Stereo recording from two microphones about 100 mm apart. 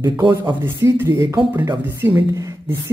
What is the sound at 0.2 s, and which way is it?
Speech, 50° right (ahead or behind).